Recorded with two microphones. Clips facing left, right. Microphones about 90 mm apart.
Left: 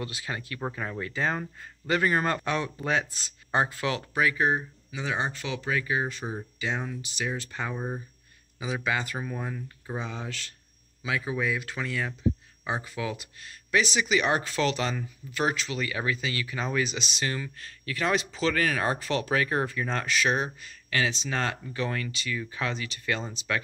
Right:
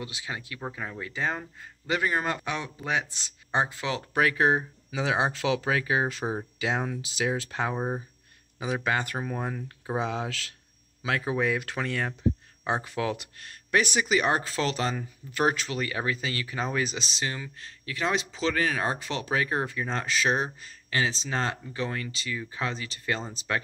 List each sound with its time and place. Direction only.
0.0 s speech: 15° right (ahead or behind)
0.7 s speech: 5° right (ahead or behind); by 4.0 s 20° right (ahead or behind)
4.1 s speech: 55° right (ahead or behind)
4.9 s speech: 90° right; by 7.7 s 75° right (ahead or behind)
7.7 s speech: 30° right (ahead or behind)
8.8 s speech: 50° right (ahead or behind)
9.9 s speech: 85° right
11.0 s speech: 55° right (ahead or behind); by 17.2 s 35° right (ahead or behind)
17.2 s speech: 20° right (ahead or behind)